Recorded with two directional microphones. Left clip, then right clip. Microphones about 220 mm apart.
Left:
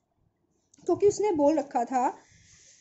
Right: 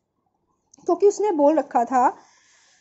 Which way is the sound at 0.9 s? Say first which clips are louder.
Right 5 dB; 10° right (ahead or behind).